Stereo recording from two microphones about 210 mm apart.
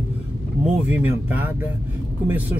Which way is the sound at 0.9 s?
10° right (ahead or behind).